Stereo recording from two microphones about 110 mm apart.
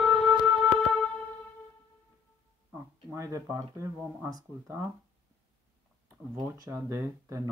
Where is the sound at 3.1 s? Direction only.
30° right (ahead or behind).